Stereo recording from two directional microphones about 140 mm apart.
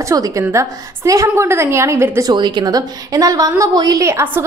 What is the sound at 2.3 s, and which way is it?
A woman's voice, 30° right (ahead or behind).